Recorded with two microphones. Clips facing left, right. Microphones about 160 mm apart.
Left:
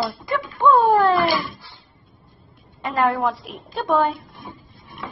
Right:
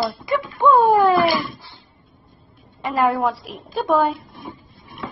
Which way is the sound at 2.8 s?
Centre (ahead or behind).